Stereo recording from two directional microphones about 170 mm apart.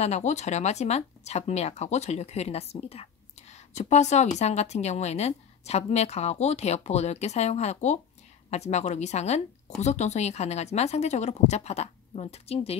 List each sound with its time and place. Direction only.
0.0 s speech: 40° left (ahead or behind)